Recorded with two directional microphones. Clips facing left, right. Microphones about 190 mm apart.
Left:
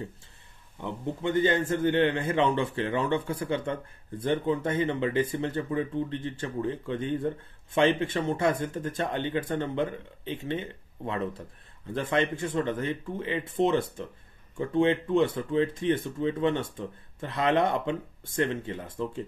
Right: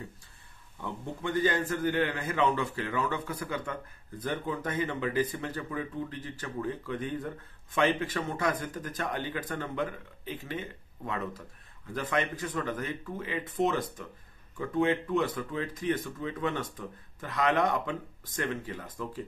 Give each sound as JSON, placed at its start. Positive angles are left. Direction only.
{"t": 0.7, "sound": "speech", "side_deg": 20}